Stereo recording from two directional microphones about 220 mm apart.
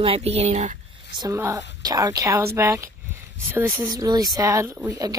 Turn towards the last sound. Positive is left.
turn(degrees=-15)  # may be behind; listen again after turning